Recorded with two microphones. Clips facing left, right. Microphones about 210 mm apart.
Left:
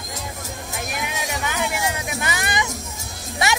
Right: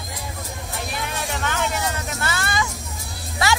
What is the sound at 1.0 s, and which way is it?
Vehicle, 10° left (ahead or behind).